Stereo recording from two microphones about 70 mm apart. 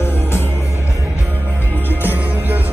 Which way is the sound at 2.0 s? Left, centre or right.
Right.